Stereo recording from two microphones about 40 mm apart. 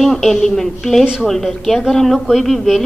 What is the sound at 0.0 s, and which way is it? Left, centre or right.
A woman's voice, centre.